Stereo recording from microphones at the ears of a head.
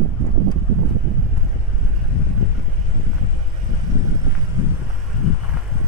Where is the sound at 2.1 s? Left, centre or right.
Left.